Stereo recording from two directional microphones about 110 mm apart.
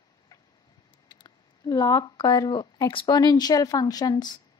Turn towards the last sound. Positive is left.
turn(degrees=40)  # may be behind; listen again after turning